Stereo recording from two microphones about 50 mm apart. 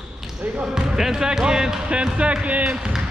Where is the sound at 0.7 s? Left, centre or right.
Centre.